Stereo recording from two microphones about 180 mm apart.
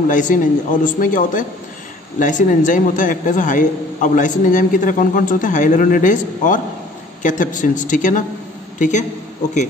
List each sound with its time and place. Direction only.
0.1 s a man's voice: 45° left (ahead or behind)